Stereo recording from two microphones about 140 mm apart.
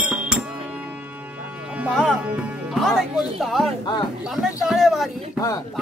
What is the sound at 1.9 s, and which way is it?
Music, 5° left (ahead or behind).